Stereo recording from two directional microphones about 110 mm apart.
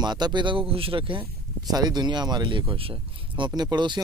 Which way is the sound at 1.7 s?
40° right (ahead or behind).